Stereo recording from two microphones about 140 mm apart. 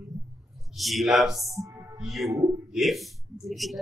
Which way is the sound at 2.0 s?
Centre (ahead or behind).